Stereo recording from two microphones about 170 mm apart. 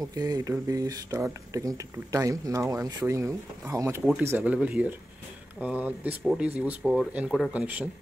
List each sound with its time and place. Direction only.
0.1 s speech: 20° right (ahead or behind)